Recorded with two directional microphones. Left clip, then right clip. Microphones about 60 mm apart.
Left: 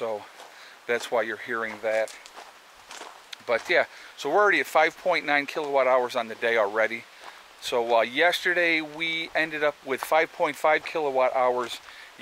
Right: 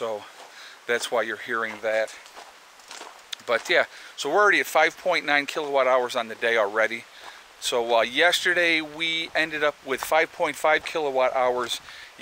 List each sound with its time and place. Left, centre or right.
0.0 s speech: centre